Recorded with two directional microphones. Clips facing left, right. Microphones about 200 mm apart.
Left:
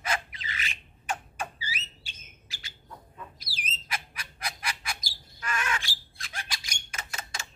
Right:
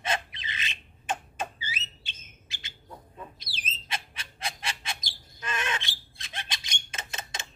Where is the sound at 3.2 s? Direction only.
25° right (ahead or behind).